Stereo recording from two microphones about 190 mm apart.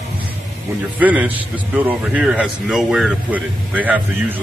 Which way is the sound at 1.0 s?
10° right (ahead or behind).